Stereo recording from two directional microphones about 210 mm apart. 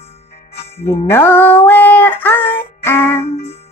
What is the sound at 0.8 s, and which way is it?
Music, 10° left (ahead or behind).